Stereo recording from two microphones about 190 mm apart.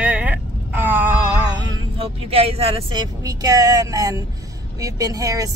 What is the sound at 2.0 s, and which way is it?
Speech, 30° right (ahead or behind).